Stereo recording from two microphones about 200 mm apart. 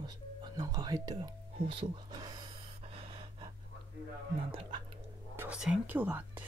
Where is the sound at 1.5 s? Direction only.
25° right (ahead or behind).